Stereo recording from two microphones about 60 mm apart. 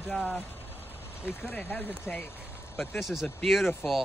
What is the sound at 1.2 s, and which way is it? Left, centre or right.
Speech, left.